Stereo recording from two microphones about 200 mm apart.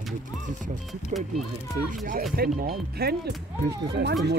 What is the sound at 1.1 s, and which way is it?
Speech, 35° right (ahead or behind).